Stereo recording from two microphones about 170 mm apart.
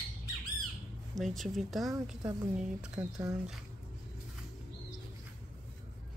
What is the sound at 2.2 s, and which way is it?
Speech, 20° right (ahead or behind).